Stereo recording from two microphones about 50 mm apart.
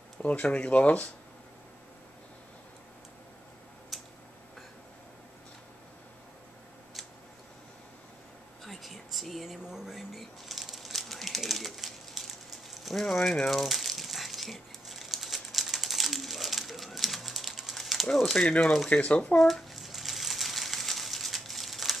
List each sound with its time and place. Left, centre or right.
0.2 s speech: left
3.9 s tick-tock: centre
8.6 s a sound: centre
18.2 s speech: centre
18.9 s speech: left
19.3 s a sound: centre